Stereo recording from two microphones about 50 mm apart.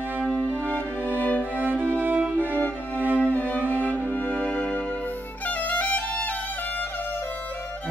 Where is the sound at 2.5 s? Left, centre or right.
Left.